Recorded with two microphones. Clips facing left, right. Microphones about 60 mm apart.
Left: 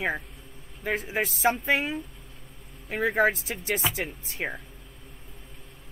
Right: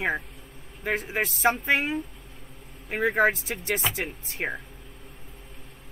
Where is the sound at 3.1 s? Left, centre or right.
Centre.